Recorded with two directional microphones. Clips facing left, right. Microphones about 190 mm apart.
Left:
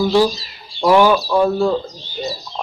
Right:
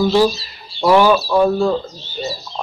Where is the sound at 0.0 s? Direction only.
15° left (ahead or behind).